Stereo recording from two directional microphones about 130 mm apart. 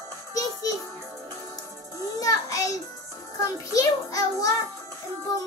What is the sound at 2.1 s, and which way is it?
Music, 25° left (ahead or behind).